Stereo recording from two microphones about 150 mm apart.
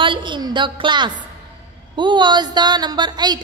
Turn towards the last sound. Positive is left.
turn(degrees=-30)  # may be behind; listen again after turning